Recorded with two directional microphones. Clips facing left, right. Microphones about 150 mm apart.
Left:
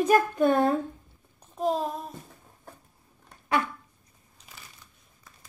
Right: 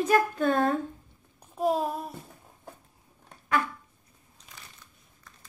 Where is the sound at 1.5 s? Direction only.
5° right (ahead or behind).